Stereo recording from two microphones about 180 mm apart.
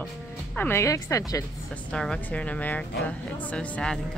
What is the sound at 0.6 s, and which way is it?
Speech, 15° left (ahead or behind).